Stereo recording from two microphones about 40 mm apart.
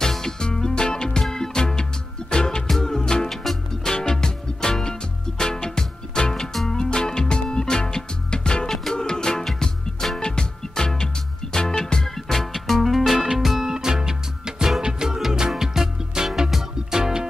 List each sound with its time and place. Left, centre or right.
0.0 s music: centre
4.1 s music: centre
6.7 s music: centre
8.6 s music: centre
8.9 s music: centre